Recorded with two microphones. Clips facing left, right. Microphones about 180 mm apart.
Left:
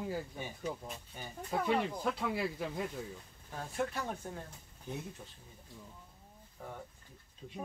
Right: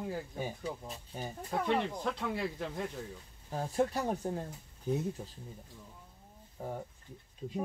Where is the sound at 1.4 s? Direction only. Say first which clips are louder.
Even; 5° left (ahead or behind).